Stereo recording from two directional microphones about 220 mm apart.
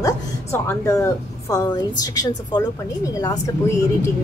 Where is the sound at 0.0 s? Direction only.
15° left (ahead or behind).